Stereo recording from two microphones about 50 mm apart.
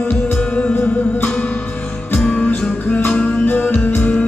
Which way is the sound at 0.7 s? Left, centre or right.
Left.